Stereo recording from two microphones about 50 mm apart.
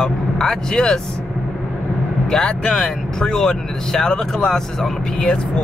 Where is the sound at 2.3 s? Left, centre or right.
Centre.